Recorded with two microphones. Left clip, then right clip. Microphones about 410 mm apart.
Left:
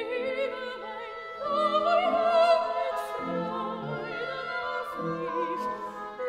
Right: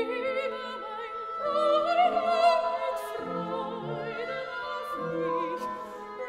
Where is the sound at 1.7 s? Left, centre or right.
Right.